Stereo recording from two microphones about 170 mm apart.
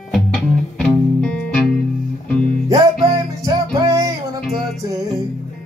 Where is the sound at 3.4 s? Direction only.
20° right (ahead or behind).